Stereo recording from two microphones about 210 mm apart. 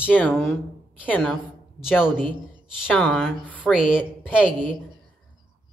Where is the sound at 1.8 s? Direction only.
5° right (ahead or behind).